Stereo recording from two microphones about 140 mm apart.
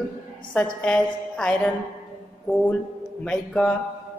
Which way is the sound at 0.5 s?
5° left (ahead or behind).